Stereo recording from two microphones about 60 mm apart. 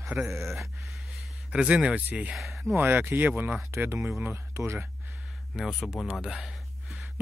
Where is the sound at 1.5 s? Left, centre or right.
Centre.